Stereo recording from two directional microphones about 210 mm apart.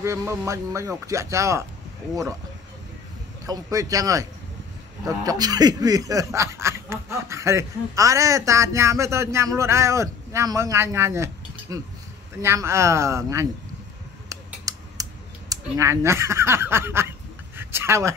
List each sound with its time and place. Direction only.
0.0 s speech: 15° right (ahead or behind)
3.4 s speech: 15° right (ahead or behind)
14.3 s scissors: 15° right (ahead or behind)
15.5 s speech: 15° right (ahead or behind)
17.6 s a sound: 10° right (ahead or behind)